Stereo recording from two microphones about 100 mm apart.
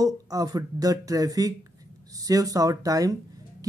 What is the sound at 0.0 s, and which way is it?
A woman's voice, 40° right (ahead or behind).